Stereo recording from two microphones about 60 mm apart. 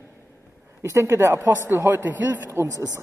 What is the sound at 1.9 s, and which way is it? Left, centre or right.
Speech, right.